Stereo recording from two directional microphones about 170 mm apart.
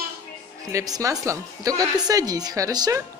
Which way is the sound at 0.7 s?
20° right (ahead or behind).